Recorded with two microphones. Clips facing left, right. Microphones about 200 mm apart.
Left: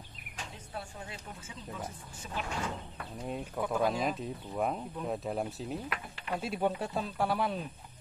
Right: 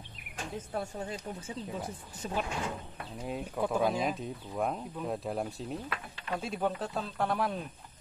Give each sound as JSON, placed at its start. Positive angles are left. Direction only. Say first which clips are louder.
{"t": 0.7, "sound": "speech", "louder": "right 6 dB", "side_deg": -40}
{"t": 2.2, "sound": "speech", "louder": "right 6 dB", "side_deg": -40}
{"t": 3.2, "sound": "speech", "louder": "right 2 dB", "side_deg": -5}